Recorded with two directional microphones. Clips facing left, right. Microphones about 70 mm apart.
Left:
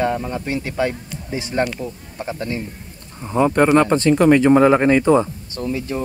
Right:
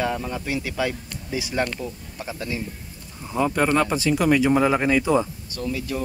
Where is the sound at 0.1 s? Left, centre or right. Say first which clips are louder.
Left 4 dB; centre.